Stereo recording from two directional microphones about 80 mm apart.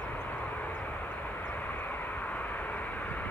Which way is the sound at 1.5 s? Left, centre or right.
Left.